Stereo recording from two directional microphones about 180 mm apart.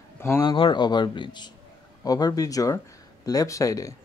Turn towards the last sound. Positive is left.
turn(degrees=20)  # may be behind; listen again after turning